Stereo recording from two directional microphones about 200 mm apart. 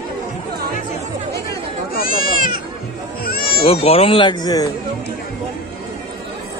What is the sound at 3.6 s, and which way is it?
Speech, 30° left (ahead or behind).